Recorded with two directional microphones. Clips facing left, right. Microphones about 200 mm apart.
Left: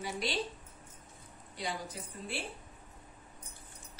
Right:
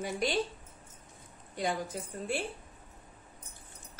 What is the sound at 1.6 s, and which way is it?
Speech, 50° right (ahead or behind).